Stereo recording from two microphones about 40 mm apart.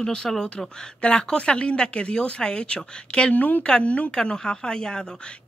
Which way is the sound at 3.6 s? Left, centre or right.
Left.